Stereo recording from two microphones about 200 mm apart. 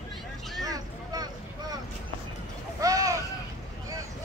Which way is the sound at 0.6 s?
20° right (ahead or behind).